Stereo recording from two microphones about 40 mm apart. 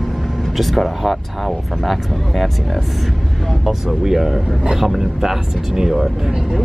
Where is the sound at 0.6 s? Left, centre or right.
Centre.